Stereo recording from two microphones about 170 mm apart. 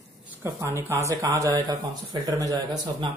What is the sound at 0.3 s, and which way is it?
Speech, 15° right (ahead or behind).